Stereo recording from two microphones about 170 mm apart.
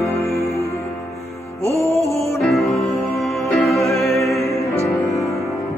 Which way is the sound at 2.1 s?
35° left (ahead or behind).